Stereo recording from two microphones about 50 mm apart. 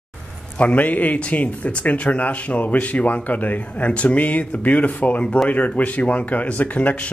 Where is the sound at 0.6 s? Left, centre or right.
Left.